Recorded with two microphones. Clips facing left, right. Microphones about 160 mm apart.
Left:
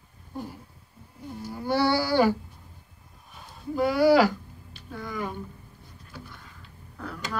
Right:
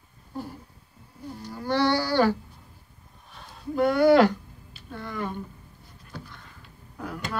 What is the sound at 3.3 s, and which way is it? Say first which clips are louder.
Speech: right 2 dB; centre (ahead or behind).